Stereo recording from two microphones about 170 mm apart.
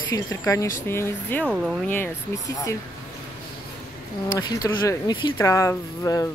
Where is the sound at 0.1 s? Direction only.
20° left (ahead or behind).